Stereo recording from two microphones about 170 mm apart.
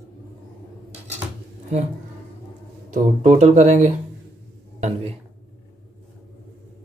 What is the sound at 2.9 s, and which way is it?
A man's voice, 40° right (ahead or behind).